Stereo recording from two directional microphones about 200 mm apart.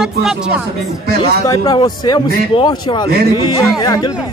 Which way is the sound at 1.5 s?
20° left (ahead or behind).